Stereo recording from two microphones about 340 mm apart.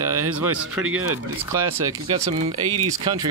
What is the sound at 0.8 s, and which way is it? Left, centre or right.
Speech, right.